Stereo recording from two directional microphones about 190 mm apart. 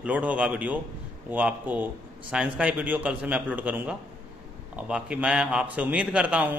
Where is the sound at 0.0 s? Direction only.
5° right (ahead or behind).